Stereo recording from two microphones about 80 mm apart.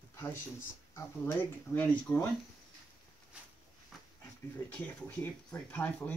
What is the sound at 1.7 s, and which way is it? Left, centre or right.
Speech, centre.